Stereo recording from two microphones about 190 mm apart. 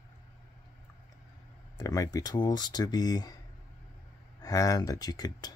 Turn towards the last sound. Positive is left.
turn(degrees=20)  # may be behind; listen again after turning